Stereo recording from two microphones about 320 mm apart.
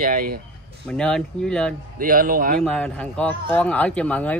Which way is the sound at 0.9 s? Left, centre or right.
Centre.